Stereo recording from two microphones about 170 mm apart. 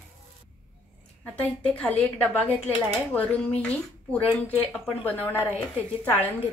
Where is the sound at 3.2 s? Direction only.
10° left (ahead or behind).